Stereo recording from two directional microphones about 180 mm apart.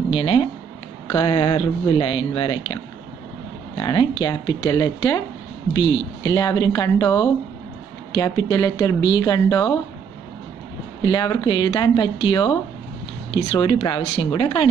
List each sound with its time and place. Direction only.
0.1 s speech: 30° left (ahead or behind)
6.2 s speech: 20° left (ahead or behind)
11.0 s speech: 25° left (ahead or behind)